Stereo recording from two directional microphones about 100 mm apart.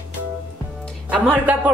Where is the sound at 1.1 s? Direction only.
15° right (ahead or behind).